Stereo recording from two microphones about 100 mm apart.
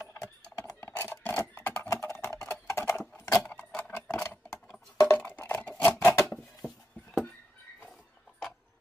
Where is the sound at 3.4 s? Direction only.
15° left (ahead or behind).